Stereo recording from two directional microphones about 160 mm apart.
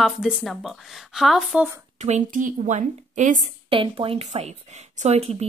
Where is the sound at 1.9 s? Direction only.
45° right (ahead or behind).